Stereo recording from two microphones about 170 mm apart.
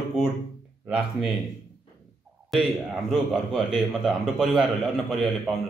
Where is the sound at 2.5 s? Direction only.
Centre (ahead or behind).